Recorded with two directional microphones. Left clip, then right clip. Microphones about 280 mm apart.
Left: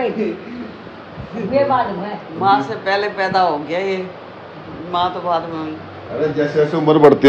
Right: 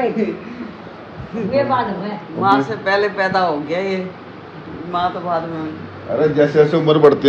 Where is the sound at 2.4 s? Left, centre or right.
Centre.